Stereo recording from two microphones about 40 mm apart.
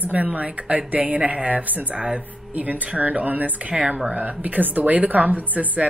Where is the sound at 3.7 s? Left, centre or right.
Right.